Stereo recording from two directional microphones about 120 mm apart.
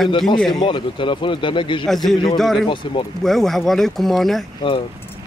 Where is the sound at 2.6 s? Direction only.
40° left (ahead or behind).